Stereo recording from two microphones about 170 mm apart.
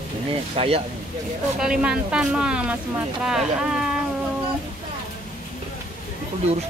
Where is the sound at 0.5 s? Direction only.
35° right (ahead or behind).